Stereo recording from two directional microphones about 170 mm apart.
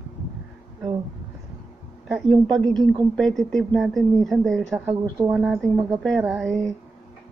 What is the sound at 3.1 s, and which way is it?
Speech, 5° left (ahead or behind).